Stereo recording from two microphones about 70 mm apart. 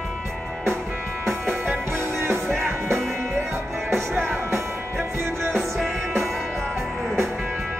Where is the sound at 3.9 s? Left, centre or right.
Right.